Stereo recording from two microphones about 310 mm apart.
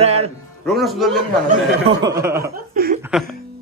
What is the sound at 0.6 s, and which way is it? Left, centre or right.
Speech, centre.